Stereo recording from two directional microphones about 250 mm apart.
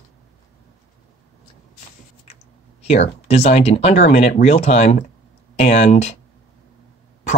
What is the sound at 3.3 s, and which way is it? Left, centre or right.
Speech, left.